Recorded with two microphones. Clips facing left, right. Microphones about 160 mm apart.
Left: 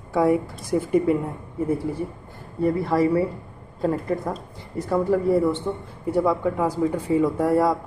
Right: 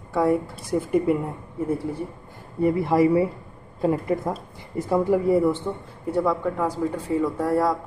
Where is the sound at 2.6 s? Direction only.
15° right (ahead or behind).